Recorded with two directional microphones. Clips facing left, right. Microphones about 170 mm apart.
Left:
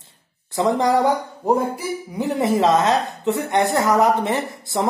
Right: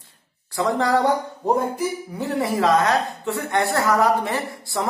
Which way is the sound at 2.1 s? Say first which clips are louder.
Left 6 dB; 20° left (ahead or behind).